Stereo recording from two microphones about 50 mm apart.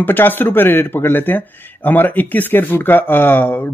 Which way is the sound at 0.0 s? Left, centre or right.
Left.